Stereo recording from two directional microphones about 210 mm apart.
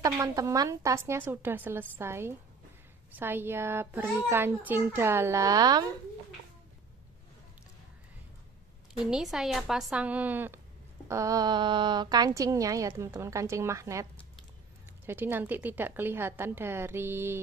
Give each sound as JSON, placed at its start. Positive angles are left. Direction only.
{"t": 0.0, "sound": "a woman's voice", "side_deg": -15}
{"t": 9.0, "sound": "a woman's voice", "side_deg": 0}
{"t": 15.0, "sound": "a woman's voice", "side_deg": -10}